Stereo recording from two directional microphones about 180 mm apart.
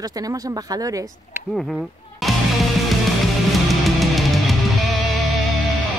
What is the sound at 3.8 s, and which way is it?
Music, centre (ahead or behind).